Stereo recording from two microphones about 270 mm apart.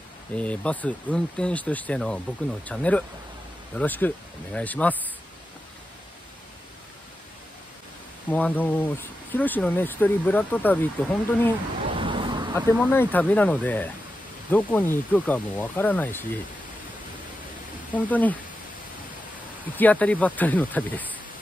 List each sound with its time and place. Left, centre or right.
0.4 s speech: centre
8.3 s speech: centre
11.9 s a sound: centre
12.9 s speech: centre
17.9 s speech: centre
19.8 s speech: centre